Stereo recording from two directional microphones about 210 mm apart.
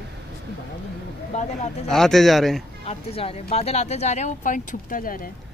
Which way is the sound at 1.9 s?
Centre (ahead or behind).